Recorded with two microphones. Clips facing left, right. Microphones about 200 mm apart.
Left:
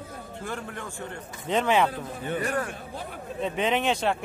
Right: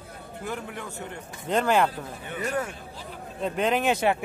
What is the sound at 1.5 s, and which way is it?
Speech, centre (ahead or behind).